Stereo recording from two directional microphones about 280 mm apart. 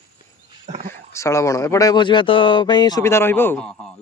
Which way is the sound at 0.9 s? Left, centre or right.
Centre.